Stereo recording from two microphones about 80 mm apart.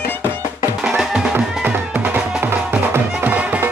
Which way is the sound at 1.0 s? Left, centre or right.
Centre.